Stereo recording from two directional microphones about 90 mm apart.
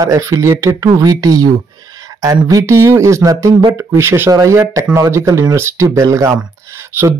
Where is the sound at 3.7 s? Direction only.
30° right (ahead or behind).